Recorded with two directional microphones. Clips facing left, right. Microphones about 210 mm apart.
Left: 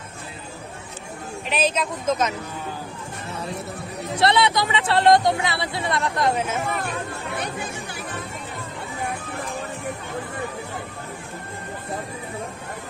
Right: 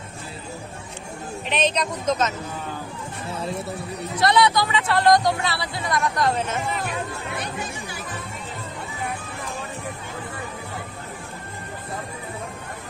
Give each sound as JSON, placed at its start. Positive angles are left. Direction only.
{"t": 1.5, "sound": "a woman's voice", "side_deg": 5}
{"t": 4.1, "sound": "speech", "side_deg": 25}